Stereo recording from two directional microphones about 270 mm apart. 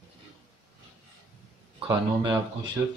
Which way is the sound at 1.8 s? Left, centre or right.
Centre.